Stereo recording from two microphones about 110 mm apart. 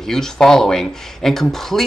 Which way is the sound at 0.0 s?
5° left (ahead or behind).